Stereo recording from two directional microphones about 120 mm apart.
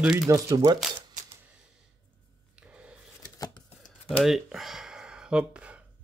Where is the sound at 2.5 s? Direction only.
10° right (ahead or behind).